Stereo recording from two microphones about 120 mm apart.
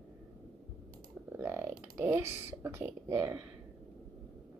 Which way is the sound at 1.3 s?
20° right (ahead or behind).